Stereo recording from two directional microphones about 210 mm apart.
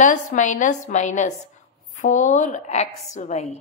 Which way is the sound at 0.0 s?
35° left (ahead or behind).